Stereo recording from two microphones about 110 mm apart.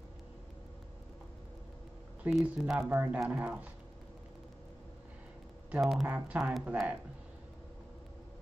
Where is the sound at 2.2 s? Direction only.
15° right (ahead or behind).